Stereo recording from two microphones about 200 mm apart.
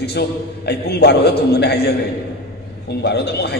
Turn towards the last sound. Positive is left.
turn(degrees=55)  # may be behind; listen again after turning